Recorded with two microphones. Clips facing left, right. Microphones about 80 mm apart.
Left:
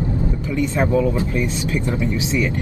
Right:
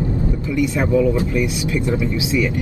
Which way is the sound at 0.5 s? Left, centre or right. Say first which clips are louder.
Right 1 dB; left.